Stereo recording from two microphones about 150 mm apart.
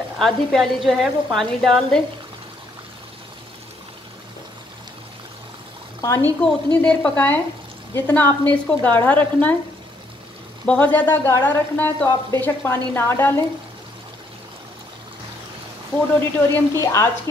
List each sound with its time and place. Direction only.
0.2 s a woman's voice: centre (ahead or behind)
5.9 s a sound: 20° left (ahead or behind)
6.4 s speech: 10° left (ahead or behind)
10.6 s speech: 10° left (ahead or behind)
16.2 s speech: 20° left (ahead or behind)